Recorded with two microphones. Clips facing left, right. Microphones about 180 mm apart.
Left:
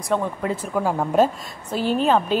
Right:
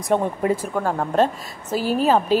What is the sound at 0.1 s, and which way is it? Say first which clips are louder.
Speech: right 2 dB; 55° right (ahead or behind).